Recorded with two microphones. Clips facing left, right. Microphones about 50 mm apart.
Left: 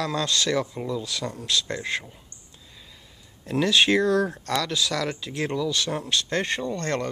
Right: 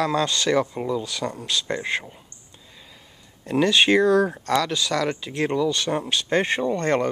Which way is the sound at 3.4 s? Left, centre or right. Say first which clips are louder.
Right 2 dB; centre.